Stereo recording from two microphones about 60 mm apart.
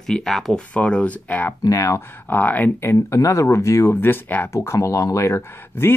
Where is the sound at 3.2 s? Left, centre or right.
Left.